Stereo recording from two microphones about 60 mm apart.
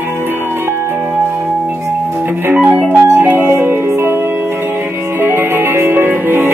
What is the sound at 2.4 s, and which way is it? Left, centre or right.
Organ, right.